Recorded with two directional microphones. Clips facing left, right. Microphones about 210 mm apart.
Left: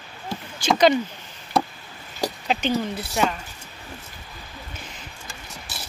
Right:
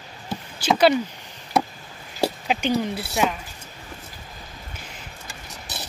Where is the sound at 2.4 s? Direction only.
10° right (ahead or behind).